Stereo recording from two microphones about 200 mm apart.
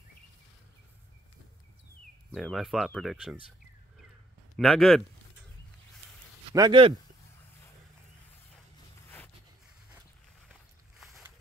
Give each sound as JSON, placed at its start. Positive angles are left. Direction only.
{"t": 2.3, "sound": "speech", "side_deg": 0}
{"t": 4.6, "sound": "speech", "side_deg": 0}
{"t": 6.5, "sound": "speech", "side_deg": -20}
{"t": 11.0, "sound": "boat", "side_deg": 0}